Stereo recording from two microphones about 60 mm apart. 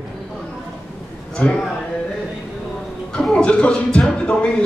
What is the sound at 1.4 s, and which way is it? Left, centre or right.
Speech, left.